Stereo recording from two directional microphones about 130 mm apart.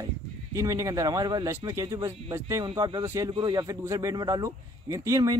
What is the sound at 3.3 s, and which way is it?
Speech, 35° right (ahead or behind).